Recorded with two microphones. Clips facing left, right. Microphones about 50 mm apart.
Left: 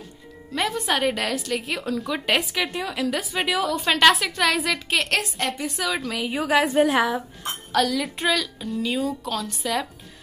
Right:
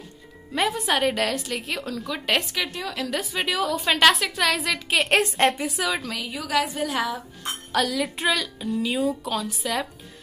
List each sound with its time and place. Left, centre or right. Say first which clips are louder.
0.6 s a woman's voice: right 1 dB; centre
6.2 s a woman's voice: left 5 dB; left
7.7 s a woman's voice: left 2 dB; centre